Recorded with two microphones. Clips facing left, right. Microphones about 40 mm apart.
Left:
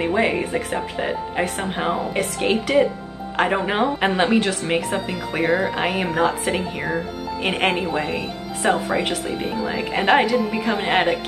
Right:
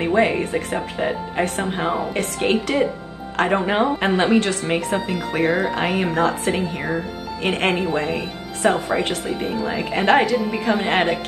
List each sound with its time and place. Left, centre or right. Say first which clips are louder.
0.0 s speech: right 2 dB; centre